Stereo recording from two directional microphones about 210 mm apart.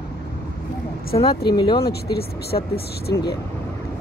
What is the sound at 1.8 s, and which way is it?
Speech, 50° left (ahead or behind).